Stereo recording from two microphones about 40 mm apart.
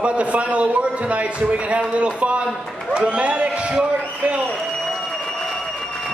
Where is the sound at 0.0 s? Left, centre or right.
Right.